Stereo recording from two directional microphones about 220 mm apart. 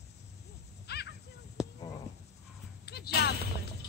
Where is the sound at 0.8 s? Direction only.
50° left (ahead or behind).